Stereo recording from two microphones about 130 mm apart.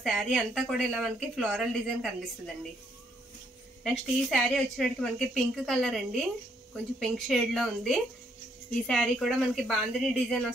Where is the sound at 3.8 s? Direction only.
Centre (ahead or behind).